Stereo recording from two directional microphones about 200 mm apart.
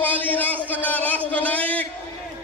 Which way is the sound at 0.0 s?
10° left (ahead or behind).